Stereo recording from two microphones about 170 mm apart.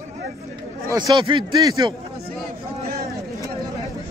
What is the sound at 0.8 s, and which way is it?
A man's voice, 25° right (ahead or behind).